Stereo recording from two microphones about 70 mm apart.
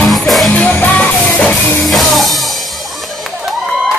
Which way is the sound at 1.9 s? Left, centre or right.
Centre.